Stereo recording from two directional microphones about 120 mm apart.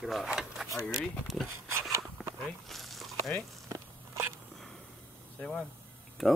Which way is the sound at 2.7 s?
Centre (ahead or behind).